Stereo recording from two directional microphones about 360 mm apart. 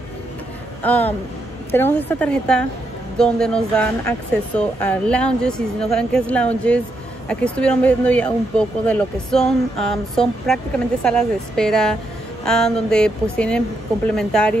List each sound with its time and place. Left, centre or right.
0.8 s speech: centre